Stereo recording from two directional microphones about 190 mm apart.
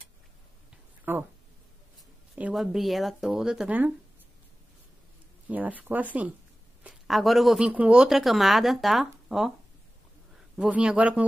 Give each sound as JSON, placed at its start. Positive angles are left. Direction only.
{"t": 1.1, "sound": "speech", "side_deg": -10}
{"t": 2.3, "sound": "speech", "side_deg": -5}
{"t": 5.5, "sound": "speech", "side_deg": -10}
{"t": 10.5, "sound": "speech", "side_deg": -5}